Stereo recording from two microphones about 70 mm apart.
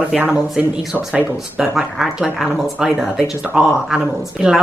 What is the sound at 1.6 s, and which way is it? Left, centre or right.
Speech, centre.